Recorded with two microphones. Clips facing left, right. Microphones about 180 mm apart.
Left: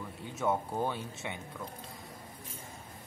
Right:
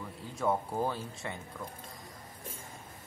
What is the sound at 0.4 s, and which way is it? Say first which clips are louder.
Speech: right 1 dB; centre (ahead or behind).